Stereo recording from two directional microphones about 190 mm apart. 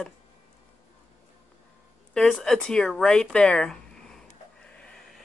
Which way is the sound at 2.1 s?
Centre (ahead or behind).